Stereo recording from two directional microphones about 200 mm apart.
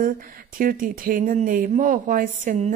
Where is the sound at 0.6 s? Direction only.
45° right (ahead or behind).